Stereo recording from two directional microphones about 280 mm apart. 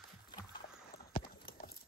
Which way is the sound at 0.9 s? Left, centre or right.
Left.